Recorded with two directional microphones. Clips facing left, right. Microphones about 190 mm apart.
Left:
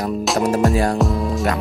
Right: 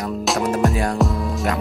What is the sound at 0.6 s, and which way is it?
Speech, centre (ahead or behind).